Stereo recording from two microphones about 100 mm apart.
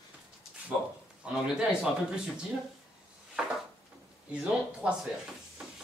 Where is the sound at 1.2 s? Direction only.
10° right (ahead or behind).